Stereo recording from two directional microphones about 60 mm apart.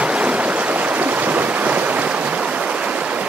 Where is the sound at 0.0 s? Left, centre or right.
Centre.